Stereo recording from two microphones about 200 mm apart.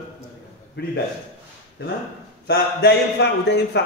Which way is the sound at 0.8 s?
55° left (ahead or behind).